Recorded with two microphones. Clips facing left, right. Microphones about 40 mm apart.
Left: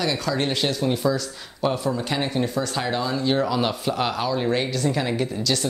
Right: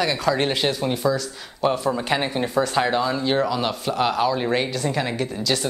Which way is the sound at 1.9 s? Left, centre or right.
Right.